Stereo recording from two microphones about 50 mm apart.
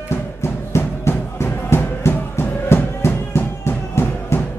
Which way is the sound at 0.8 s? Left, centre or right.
Left.